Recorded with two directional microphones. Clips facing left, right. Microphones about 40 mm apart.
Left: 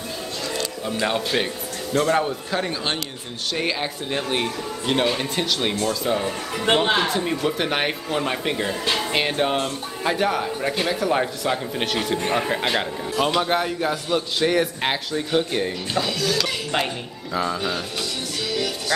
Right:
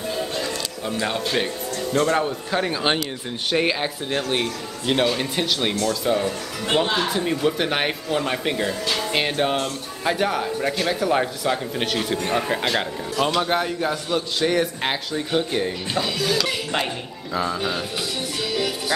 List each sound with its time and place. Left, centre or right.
1.0 s a man's voice: centre
2.6 s a man's voice: centre
6.2 s speech: left
7.1 s a man's voice: centre
15.9 s a man's voice: centre
18.5 s music: centre